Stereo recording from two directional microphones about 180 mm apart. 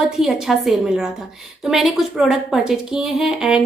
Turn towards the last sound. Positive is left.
turn(degrees=-5)  # may be behind; listen again after turning